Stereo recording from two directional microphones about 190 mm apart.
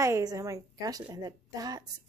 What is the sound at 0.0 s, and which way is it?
Speech, 15° right (ahead or behind).